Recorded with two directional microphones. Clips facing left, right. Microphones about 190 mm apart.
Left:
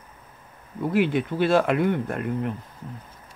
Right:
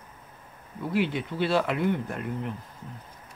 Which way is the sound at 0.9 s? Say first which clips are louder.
Left 5 dB; 50° left (ahead or behind).